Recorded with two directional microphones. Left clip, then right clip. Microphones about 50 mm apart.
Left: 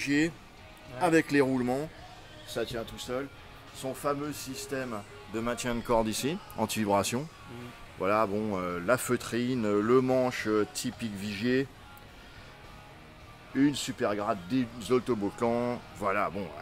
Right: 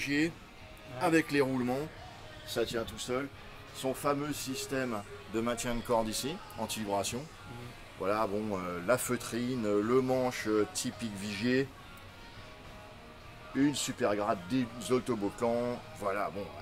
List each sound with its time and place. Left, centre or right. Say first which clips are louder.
0.0 s speech: left 3 dB; left
5.9 s speech: left 4 dB; left
8.0 s speech: left 4 dB; left
13.6 s speech: left 2 dB; centre
15.2 s speech: left 2 dB; left